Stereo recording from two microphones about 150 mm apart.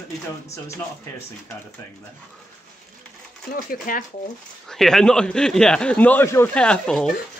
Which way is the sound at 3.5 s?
65° left (ahead or behind).